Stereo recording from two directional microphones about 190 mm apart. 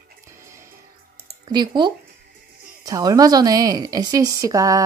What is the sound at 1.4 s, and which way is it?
A woman's voice, 20° right (ahead or behind).